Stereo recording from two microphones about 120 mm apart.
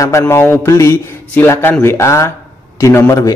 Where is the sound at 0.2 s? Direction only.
20° left (ahead or behind).